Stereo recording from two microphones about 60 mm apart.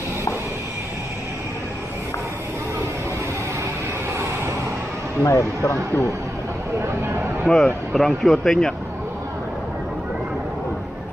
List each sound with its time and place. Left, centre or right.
5.2 s speech: left
7.4 s speech: centre